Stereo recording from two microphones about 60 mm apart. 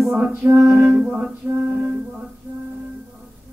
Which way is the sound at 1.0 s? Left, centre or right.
Centre.